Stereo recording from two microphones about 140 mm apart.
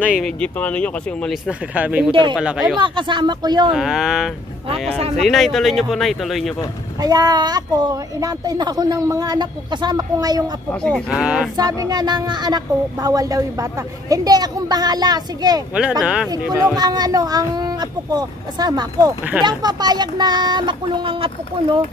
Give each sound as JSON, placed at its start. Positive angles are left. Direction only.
{"t": 0.2, "sound": "speech", "side_deg": 10}
{"t": 1.3, "sound": "speech", "side_deg": -10}
{"t": 2.8, "sound": "speech", "side_deg": -35}
{"t": 3.7, "sound": "speech", "side_deg": -5}
{"t": 4.8, "sound": "speech", "side_deg": -50}
{"t": 5.2, "sound": "speech", "side_deg": 0}
{"t": 7.0, "sound": "speech", "side_deg": -30}
{"t": 10.7, "sound": "speech", "side_deg": 10}
{"t": 11.1, "sound": "speech", "side_deg": -10}
{"t": 11.5, "sound": "speech", "side_deg": -25}
{"t": 16.0, "sound": "speech", "side_deg": -5}
{"t": 16.7, "sound": "speech", "side_deg": -30}